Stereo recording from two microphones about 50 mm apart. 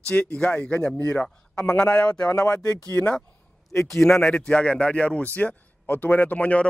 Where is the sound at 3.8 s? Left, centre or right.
Centre.